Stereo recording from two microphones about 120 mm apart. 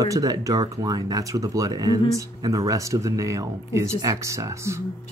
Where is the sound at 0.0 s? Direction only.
30° right (ahead or behind).